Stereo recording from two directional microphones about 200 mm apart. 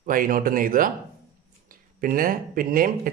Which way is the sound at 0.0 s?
45° right (ahead or behind).